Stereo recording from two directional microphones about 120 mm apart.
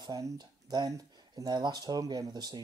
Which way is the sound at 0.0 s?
35° right (ahead or behind).